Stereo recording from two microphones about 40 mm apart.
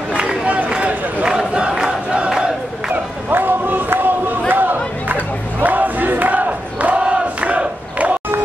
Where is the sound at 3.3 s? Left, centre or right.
Right.